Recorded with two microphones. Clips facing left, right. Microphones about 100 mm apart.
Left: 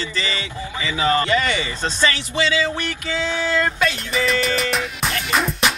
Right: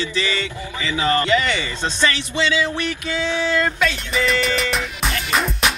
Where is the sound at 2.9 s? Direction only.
15° right (ahead or behind).